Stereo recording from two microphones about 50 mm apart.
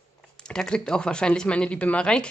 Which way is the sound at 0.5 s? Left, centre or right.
Centre.